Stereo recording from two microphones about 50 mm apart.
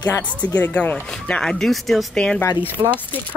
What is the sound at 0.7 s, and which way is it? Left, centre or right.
Speech, left.